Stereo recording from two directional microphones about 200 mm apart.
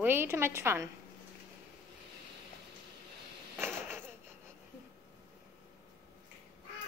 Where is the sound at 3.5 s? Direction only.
10° right (ahead or behind).